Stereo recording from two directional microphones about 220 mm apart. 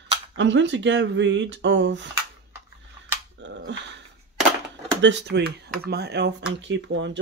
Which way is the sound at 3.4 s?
55° right (ahead or behind).